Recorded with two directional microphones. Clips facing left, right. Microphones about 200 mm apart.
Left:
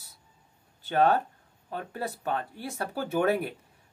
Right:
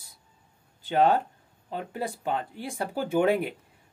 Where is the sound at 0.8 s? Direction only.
15° right (ahead or behind).